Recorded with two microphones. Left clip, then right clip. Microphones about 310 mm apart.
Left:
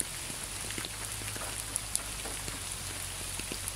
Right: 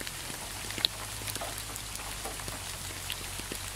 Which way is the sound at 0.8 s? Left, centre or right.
Right.